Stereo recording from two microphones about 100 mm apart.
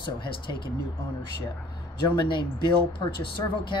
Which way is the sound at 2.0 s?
50° left (ahead or behind).